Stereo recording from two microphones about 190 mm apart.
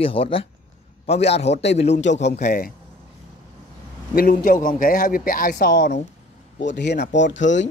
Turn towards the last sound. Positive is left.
turn(degrees=75)  # may be behind; listen again after turning